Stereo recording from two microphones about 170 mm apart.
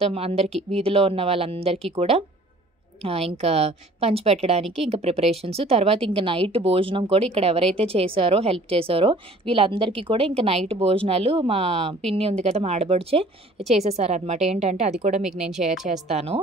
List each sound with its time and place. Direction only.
0.0 s a woman's voice: 35° right (ahead or behind)
15.2 s speech: 5° right (ahead or behind)
15.9 s a woman's voice: 40° right (ahead or behind)